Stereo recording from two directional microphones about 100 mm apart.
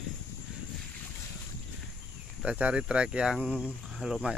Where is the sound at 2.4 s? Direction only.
10° right (ahead or behind).